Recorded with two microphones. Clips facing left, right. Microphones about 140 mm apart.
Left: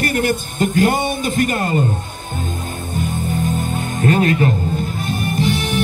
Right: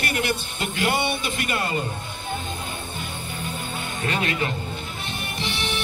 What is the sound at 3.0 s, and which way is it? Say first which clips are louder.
Music: left 12 dB; 40° left (ahead or behind).